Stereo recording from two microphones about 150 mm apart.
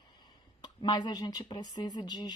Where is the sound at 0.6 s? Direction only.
30° left (ahead or behind).